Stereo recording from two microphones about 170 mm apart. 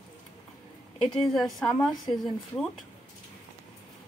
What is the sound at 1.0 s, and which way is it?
A woman's voice, 5° left (ahead or behind).